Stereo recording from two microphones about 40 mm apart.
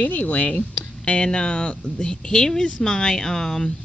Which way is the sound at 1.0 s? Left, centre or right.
Left.